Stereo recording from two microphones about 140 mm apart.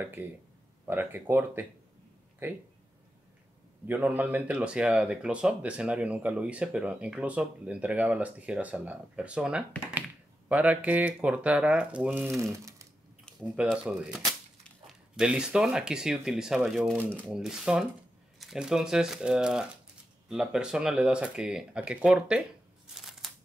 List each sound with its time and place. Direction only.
0.0 s speech: 15° right (ahead or behind)
3.8 s speech: 15° right (ahead or behind)
12.4 s speech: 20° right (ahead or behind)
13.4 s speech: 5° right (ahead or behind)
22.9 s a sound: centre (ahead or behind)